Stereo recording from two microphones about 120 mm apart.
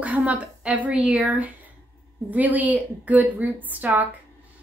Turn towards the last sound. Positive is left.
turn(degrees=-15)  # may be behind; listen again after turning